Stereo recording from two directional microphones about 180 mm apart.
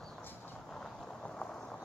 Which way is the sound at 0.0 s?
5° left (ahead or behind).